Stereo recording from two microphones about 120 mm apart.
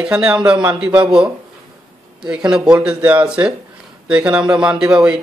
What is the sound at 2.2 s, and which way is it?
Speech, 5° right (ahead or behind).